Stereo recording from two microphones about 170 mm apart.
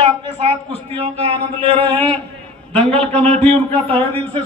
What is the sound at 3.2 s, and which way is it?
A man's voice, 40° right (ahead or behind).